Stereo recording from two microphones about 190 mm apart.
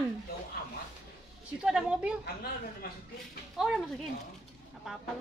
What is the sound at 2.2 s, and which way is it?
Speech, 55° left (ahead or behind).